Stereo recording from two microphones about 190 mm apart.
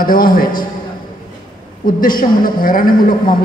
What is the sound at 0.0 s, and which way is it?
Speech, 50° left (ahead or behind).